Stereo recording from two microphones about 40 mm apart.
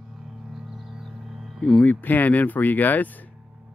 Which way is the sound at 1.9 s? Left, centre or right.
Left.